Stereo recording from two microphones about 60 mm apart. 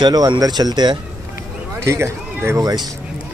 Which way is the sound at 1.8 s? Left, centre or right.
Right.